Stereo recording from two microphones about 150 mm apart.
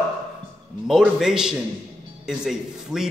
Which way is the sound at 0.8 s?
5° right (ahead or behind).